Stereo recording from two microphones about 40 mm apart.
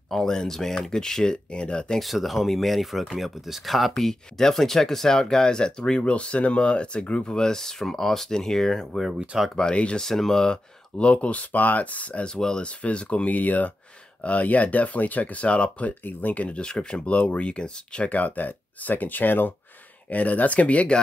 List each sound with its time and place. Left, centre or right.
0.1 s speech: centre
2.0 s speech: centre
3.9 s speech: centre
9.6 s speech: left
9.9 s speech: centre
10.4 s speech: left
11.5 s speech: left
12.4 s speech: centre
12.6 s speech: left
15.4 s speech: left
15.9 s speech: left
18.1 s speech: left
20.1 s speech: left